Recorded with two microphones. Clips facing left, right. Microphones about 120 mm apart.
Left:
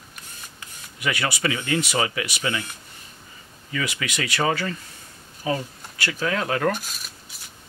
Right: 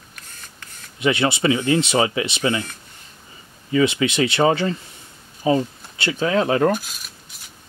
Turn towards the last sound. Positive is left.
turn(degrees=-25)  # may be behind; listen again after turning